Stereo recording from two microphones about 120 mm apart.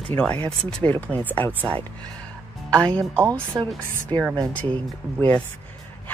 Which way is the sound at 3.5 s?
15° right (ahead or behind).